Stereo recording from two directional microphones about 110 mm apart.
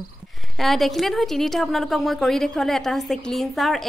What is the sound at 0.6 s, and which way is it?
A woman's voice, centre (ahead or behind).